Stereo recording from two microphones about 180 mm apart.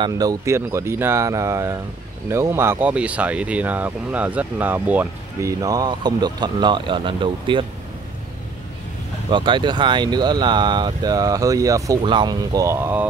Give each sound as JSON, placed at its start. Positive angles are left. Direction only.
{"t": 0.0, "sound": "speech", "side_deg": -20}
{"t": 9.3, "sound": "speech", "side_deg": -25}